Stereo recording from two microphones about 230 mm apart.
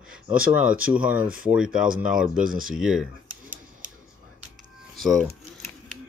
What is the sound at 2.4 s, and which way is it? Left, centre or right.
Speech, right.